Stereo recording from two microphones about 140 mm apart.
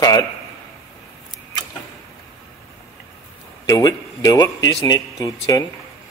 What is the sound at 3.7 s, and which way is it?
Speech, 25° left (ahead or behind).